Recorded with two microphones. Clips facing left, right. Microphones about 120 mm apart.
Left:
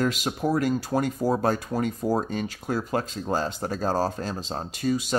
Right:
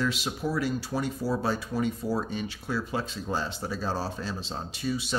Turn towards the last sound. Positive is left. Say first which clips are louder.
# left 5 dB
turn(degrees=45)  # may be behind; listen again after turning